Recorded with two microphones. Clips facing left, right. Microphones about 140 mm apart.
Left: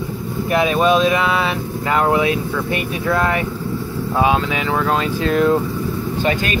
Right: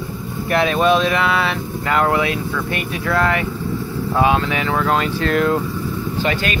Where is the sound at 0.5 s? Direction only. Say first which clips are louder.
Even; 10° left (ahead or behind).